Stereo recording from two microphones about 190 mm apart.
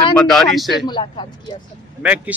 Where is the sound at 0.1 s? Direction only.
5° left (ahead or behind).